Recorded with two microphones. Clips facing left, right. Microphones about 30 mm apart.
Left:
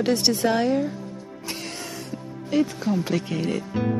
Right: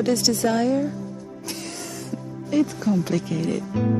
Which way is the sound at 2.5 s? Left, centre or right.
Left.